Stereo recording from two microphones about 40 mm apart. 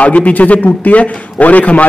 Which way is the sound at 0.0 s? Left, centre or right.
Left.